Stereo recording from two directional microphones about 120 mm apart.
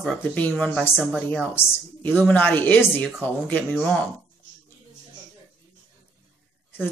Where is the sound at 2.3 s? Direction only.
15° left (ahead or behind).